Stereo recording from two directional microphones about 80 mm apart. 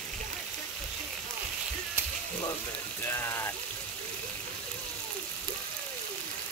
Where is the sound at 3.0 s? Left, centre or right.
Left.